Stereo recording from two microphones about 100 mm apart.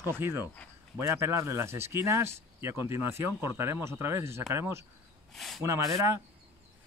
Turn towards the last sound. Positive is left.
turn(degrees=-30)  # may be behind; listen again after turning